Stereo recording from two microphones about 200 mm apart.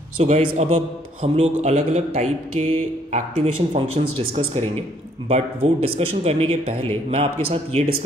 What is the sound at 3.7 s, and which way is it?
A man's voice, 30° right (ahead or behind).